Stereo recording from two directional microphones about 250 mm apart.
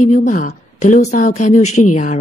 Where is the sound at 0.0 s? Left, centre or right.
Left.